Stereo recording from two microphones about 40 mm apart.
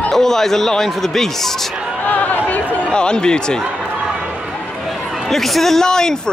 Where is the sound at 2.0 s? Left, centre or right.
Left.